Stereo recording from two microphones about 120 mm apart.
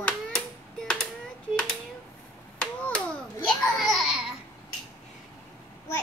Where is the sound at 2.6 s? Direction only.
10° left (ahead or behind).